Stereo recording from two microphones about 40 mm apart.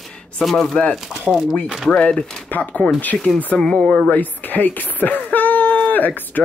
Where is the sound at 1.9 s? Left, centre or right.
Left.